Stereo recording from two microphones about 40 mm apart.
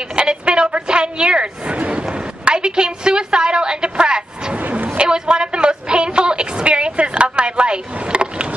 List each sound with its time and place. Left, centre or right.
0.1 s vehicle: right
2.4 s a woman's voice: right
4.9 s a sound: centre